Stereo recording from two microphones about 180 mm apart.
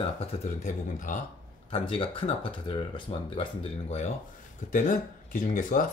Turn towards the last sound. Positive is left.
turn(degrees=45)  # may be behind; listen again after turning